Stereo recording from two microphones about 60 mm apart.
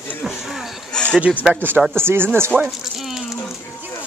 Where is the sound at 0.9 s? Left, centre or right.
Centre.